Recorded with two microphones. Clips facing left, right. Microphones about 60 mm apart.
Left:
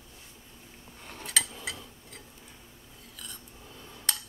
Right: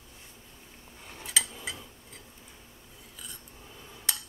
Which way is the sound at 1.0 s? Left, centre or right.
Centre.